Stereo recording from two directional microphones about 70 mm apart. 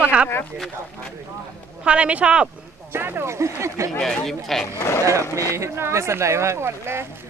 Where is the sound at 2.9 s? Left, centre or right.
Right.